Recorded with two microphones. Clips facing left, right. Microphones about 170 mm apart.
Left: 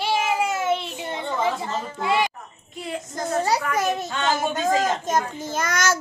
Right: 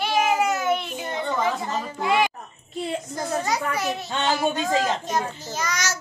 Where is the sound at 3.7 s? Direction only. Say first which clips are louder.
Left 3 dB; 45° left (ahead or behind).